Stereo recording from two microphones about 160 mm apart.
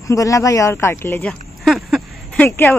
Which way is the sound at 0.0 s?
20° left (ahead or behind).